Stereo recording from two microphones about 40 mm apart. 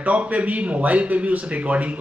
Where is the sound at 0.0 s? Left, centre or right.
Right.